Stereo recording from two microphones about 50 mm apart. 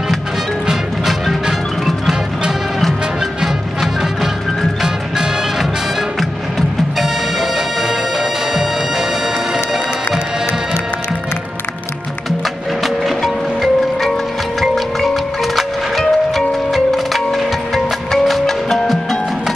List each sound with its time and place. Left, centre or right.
0.7 s music: centre
7.0 s music: centre
12.8 s music: centre
15.5 s music: centre